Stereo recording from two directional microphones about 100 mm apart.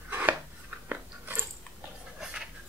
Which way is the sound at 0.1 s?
20° right (ahead or behind).